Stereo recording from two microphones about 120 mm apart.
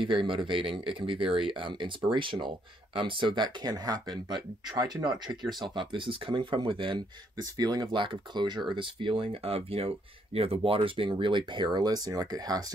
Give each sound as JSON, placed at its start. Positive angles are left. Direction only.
{"t": 0.0, "sound": "speech", "side_deg": -45}
{"t": 7.5, "sound": "speech", "side_deg": -35}